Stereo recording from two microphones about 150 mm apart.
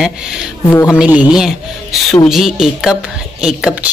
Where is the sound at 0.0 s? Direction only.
5° right (ahead or behind).